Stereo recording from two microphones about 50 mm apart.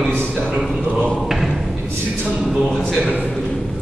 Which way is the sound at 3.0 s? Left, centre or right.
Right.